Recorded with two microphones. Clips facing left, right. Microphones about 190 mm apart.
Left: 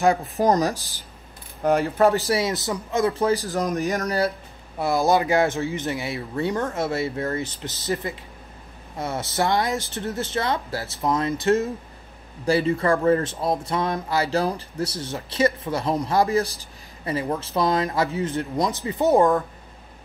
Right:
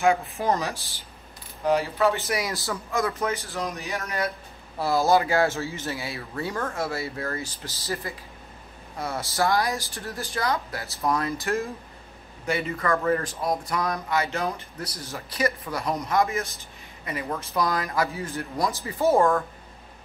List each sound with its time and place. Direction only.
0.0 s speech: 35° left (ahead or behind)
1.6 s speech: 50° left (ahead or behind)
2.1 s speech: 30° left (ahead or behind)
4.7 s speech: 20° left (ahead or behind)